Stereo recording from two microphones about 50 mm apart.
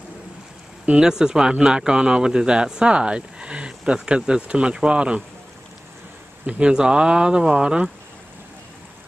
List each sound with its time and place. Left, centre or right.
0.8 s speech: centre
6.4 s speech: centre